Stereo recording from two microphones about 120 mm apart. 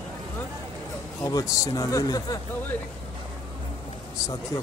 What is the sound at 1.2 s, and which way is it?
Speech, 30° left (ahead or behind).